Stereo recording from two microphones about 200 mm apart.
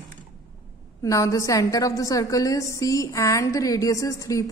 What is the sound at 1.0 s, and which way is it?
A woman's voice, 15° left (ahead or behind).